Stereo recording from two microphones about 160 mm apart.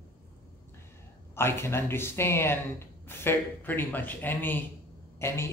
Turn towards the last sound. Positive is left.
turn(degrees=15)  # may be behind; listen again after turning